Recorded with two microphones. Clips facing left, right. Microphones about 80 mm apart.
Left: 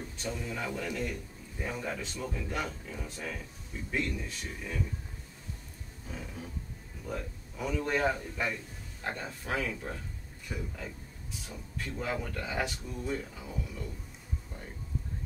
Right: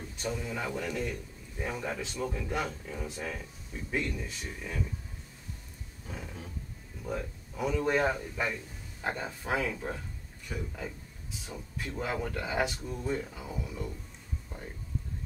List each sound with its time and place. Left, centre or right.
0.2 s speech: centre
6.0 s roaring cats: centre
7.1 s speech: centre
10.5 s roaring cats: centre
11.4 s speech: centre